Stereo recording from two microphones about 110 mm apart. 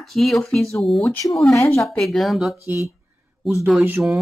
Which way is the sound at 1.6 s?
25° left (ahead or behind).